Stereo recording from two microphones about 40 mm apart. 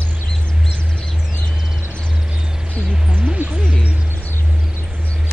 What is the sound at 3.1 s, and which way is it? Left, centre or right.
Music, right.